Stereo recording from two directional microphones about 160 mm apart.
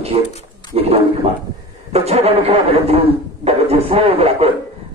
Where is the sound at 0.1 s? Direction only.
40° right (ahead or behind).